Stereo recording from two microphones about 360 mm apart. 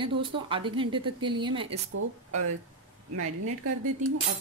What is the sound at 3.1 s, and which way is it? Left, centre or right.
Speech, right.